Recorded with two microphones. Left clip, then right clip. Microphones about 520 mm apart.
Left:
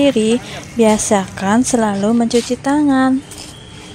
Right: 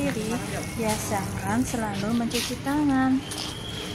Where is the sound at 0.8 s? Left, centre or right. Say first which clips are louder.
Left 15 dB; right.